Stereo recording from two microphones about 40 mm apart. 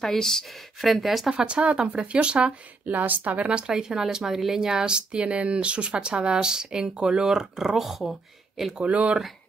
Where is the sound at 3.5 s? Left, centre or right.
Right; by 8.1 s centre.